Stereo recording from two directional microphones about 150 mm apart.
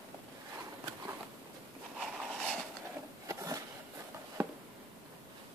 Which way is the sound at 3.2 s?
25° right (ahead or behind).